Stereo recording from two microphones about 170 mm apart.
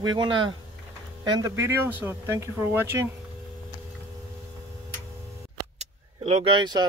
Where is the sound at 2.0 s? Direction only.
15° right (ahead or behind).